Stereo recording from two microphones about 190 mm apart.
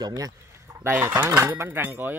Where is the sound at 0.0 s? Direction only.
20° right (ahead or behind).